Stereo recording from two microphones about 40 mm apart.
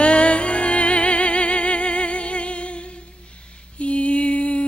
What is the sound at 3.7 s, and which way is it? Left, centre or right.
Mantra, left.